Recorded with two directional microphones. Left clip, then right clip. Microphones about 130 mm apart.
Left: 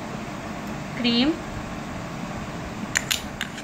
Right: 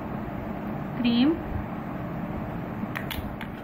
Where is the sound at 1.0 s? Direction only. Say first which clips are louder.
Left 2 dB; 70° left (ahead or behind).